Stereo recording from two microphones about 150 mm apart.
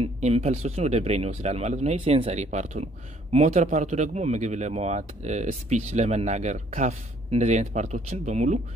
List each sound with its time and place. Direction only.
0.0 s speech: 40° right (ahead or behind)